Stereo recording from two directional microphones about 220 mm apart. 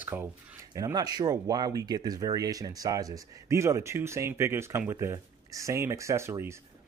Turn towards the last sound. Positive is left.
turn(degrees=-10)  # may be behind; listen again after turning